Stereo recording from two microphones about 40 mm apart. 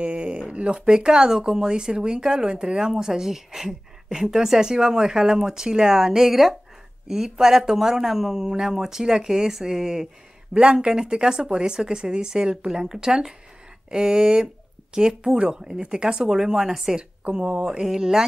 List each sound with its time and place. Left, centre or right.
0.0 s speech: right
2.8 s speech: centre
10.5 s speech: right; by 16.9 s centre
17.3 s speech: right
17.8 s speech: centre